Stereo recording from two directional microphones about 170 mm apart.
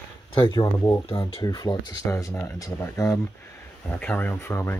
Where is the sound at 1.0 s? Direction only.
30° left (ahead or behind).